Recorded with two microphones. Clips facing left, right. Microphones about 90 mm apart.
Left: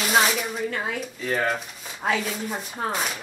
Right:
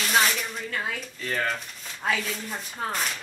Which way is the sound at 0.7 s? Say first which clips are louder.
Left 2 dB; 20° left (ahead or behind).